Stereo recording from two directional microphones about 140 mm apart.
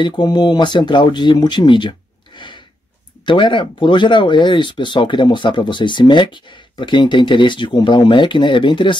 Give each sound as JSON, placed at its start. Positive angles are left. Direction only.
{"t": 0.0, "sound": "speech", "side_deg": 30}